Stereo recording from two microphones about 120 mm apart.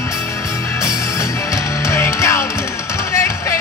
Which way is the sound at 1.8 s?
25° left (ahead or behind).